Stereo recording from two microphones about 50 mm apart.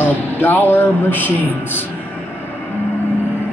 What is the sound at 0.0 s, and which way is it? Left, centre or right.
A man's voice, left.